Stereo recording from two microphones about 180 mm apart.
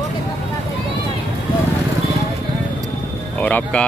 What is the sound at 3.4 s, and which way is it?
Speech, 5° left (ahead or behind).